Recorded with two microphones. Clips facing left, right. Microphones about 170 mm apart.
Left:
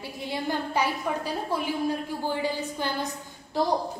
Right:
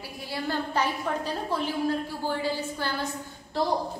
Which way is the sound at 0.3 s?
15° left (ahead or behind).